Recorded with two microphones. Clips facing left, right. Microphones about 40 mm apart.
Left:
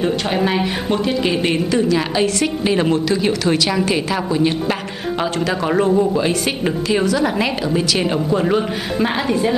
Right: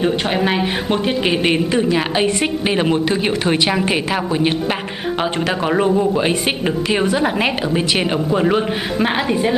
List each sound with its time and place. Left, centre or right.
0.0 s a woman's voice: centre
5.7 s speech: centre
6.9 s a woman's voice: right